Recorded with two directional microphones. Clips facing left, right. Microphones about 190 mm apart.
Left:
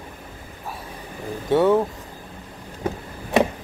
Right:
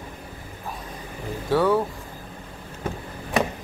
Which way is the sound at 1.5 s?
20° left (ahead or behind).